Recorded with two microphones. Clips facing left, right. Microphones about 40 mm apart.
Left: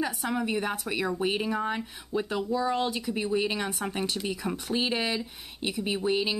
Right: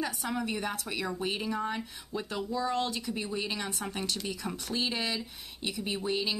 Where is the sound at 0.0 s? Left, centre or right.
Centre.